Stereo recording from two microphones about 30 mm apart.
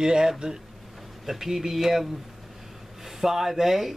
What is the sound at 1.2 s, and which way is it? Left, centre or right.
Speech, centre.